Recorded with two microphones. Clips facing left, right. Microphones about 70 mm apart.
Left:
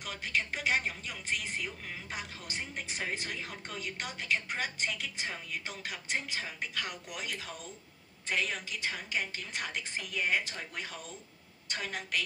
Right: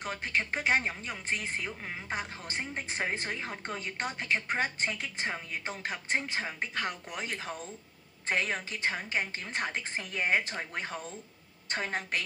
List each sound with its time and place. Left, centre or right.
0.0 s speech: right